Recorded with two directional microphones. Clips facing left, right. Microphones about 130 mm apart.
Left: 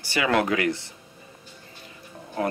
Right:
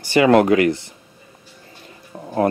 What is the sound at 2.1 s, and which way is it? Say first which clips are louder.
Music: right 9 dB; 35° right (ahead or behind).